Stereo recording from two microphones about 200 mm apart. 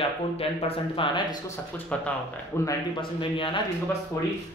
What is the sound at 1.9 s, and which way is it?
Speech, 10° left (ahead or behind).